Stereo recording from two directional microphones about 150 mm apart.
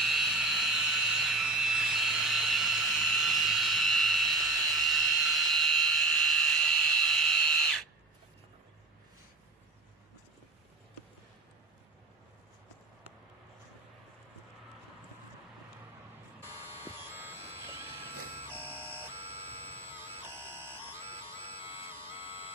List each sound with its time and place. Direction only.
0.0 s a sound: centre (ahead or behind)
16.4 s buzzer: 15° right (ahead or behind)
17.6 s printer: 15° right (ahead or behind)
19.9 s music: 15° right (ahead or behind)